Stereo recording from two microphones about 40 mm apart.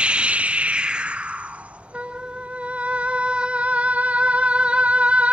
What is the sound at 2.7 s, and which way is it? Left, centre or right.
Music, right.